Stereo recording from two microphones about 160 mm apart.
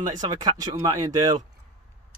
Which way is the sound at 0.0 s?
25° right (ahead or behind).